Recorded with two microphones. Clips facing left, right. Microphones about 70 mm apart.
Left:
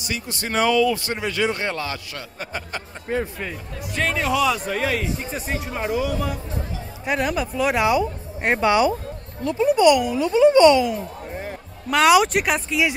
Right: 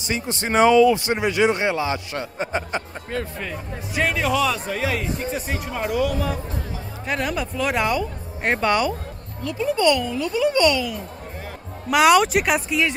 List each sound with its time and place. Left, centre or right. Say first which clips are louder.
0.0 s speech: right 3 dB; right
3.1 s speech: left 4 dB; centre
3.9 s speech: right 1 dB; centre
9.4 s a child's voice: left 4 dB; left
11.9 s speech: even; centre